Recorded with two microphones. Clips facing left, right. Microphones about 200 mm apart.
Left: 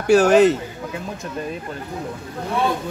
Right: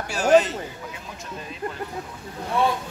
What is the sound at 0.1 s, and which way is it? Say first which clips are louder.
Speech: left 6 dB; 65° left (ahead or behind).